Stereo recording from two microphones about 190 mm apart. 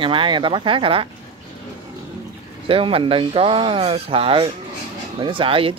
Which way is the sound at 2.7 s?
30° right (ahead or behind).